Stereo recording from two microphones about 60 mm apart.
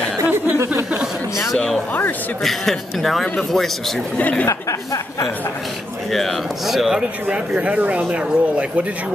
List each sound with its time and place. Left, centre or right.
2.4 s a man's voice: centre
4.2 s a woman's voice: left
4.5 s speech: left
6.1 s a man's voice: centre
7.0 s speech: centre